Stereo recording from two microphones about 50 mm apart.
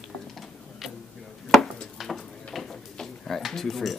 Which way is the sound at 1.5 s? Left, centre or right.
Centre.